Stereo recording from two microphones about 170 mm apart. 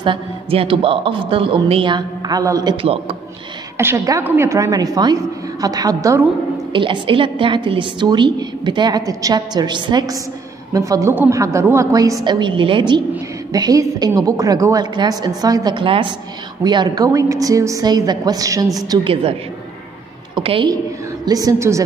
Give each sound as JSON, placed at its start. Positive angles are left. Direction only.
{"t": 0.0, "sound": "a woman's voice", "side_deg": -30}
{"t": 2.8, "sound": "a woman's voice", "side_deg": -35}
{"t": 3.7, "sound": "a woman's voice", "side_deg": -15}
{"t": 6.7, "sound": "a woman's voice", "side_deg": -30}
{"t": 20.3, "sound": "a woman's voice", "side_deg": -30}